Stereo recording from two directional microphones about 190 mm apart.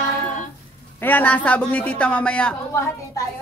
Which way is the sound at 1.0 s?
10° left (ahead or behind).